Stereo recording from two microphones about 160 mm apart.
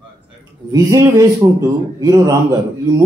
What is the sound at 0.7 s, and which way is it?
A man's voice, 20° right (ahead or behind).